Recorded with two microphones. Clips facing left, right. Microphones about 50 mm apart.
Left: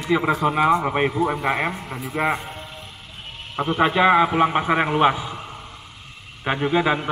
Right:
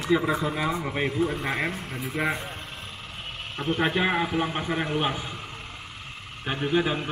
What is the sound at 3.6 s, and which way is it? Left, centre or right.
Speech, left.